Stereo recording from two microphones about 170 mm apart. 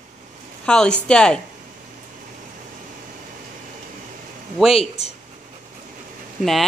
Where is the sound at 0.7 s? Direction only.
5° left (ahead or behind).